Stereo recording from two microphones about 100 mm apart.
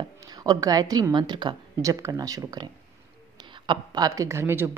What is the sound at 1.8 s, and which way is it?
Speech, 35° right (ahead or behind).